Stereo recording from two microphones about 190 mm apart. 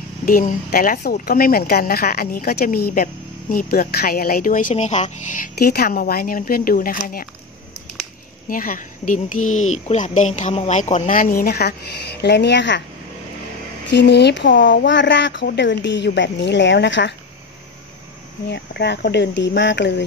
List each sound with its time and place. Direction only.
0.2 s a woman's voice: 45° left (ahead or behind)
8.5 s a woman's voice: 45° left (ahead or behind); by 12.8 s 65° left (ahead or behind)
13.8 s speech: 65° left (ahead or behind)
18.5 s speech: 65° left (ahead or behind)